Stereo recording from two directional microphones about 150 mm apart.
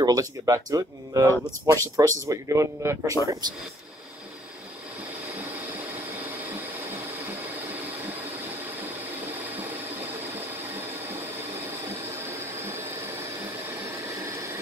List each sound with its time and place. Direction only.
0.0 s speech: 25° right (ahead or behind)